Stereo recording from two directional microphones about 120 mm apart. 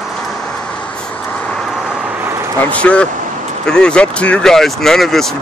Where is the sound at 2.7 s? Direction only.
10° left (ahead or behind).